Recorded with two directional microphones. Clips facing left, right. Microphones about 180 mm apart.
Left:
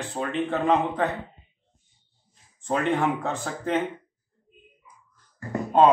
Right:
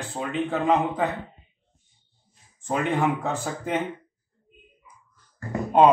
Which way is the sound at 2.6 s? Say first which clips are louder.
Even; 5° right (ahead or behind).